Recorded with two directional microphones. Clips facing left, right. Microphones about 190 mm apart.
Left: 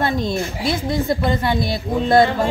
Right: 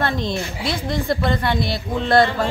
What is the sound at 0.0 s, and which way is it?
A woman's voice, 10° left (ahead or behind).